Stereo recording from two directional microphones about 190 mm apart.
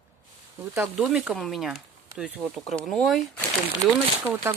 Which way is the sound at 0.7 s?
10° right (ahead or behind).